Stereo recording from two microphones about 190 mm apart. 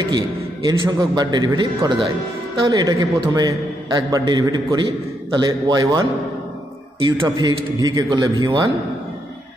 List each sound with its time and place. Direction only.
0.7 s a man's voice: 20° right (ahead or behind)
7.1 s a man's voice: 20° right (ahead or behind)